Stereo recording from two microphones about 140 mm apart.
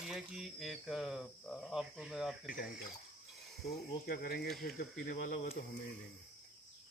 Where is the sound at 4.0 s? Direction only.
90° left.